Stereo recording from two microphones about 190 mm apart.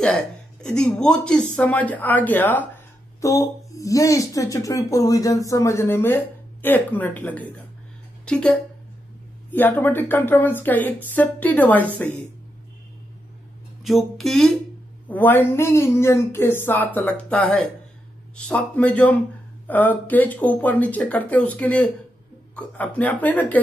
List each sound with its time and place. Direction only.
0.0 s speech: 5° left (ahead or behind)
13.8 s speech: centre (ahead or behind)